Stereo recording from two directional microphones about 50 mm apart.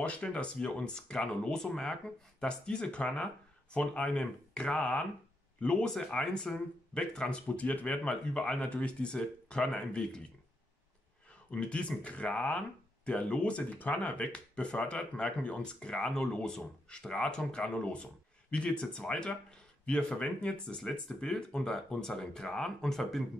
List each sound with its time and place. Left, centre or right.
0.0 s speech: left
7.4 s speech: left
11.5 s speech: left; by 23.2 s centre